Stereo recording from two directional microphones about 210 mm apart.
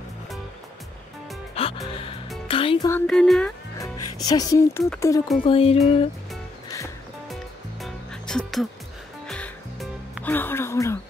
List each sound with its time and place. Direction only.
1.5 s music: 30° left (ahead or behind)
2.9 s music: 5° left (ahead or behind)
3.8 s music: 20° left (ahead or behind)
4.8 s music: 5° left (ahead or behind)
5.4 s music: 25° left (ahead or behind)
7.8 s music: 5° left (ahead or behind)